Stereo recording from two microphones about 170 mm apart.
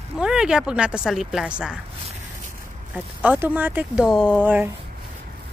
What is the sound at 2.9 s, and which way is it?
Speech, 10° right (ahead or behind).